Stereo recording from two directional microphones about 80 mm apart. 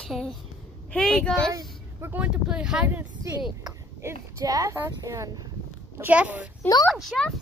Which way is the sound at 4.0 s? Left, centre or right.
Right.